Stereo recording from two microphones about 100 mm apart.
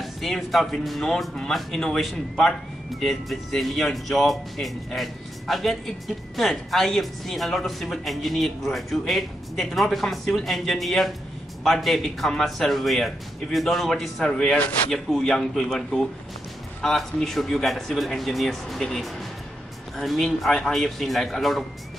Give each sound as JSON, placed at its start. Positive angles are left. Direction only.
{"t": 0.0, "sound": "speech", "side_deg": 0}